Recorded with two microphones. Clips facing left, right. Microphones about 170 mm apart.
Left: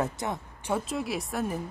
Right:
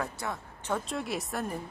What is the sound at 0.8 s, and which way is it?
Speech, centre (ahead or behind).